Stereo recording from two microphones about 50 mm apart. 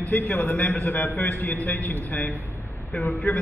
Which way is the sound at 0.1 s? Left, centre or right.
Left.